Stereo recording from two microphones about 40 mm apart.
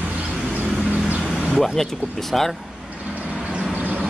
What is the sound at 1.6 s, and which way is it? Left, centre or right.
Speech, centre.